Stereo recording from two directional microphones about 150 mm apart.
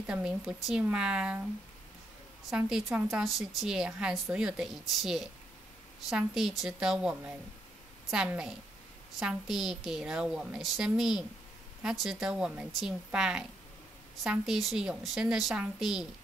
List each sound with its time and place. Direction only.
0.0 s speech: 5° right (ahead or behind)
2.5 s a woman's voice: 5° right (ahead or behind)